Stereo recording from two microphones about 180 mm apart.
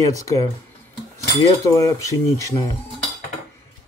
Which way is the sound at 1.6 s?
15° left (ahead or behind).